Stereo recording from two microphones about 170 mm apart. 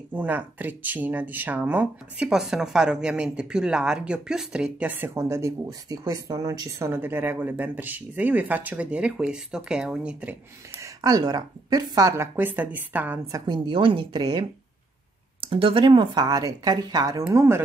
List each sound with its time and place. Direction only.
0.1 s speech: 10° right (ahead or behind)
10.8 s speech: 20° right (ahead or behind)
13.5 s speech: 30° right (ahead or behind)
15.4 s speech: 30° right (ahead or behind); by 17.6 s 15° right (ahead or behind)